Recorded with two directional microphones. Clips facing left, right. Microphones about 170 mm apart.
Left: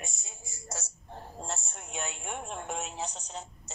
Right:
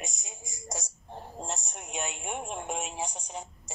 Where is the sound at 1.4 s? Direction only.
15° right (ahead or behind).